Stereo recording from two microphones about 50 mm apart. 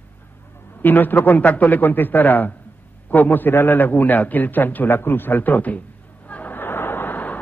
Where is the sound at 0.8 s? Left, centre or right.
Left.